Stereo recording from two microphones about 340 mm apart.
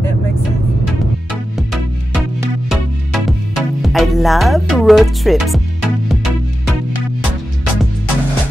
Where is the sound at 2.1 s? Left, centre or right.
Centre.